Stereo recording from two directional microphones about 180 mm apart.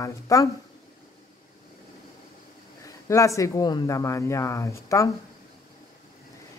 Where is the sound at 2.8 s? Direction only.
15° left (ahead or behind).